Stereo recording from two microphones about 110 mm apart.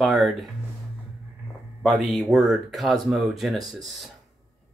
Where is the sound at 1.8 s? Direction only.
Centre (ahead or behind).